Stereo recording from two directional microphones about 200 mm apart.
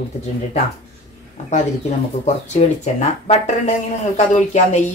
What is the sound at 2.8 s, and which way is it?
Speech, 35° left (ahead or behind).